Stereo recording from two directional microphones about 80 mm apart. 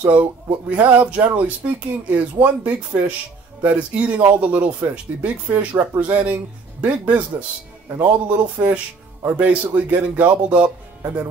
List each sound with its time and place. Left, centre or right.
0.0 s speech: centre